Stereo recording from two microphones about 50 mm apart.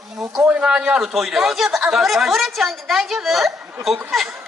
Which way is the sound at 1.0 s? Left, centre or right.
Centre.